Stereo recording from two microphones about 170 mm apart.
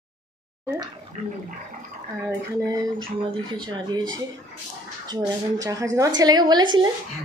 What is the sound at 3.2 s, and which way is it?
Speech, 25° right (ahead or behind).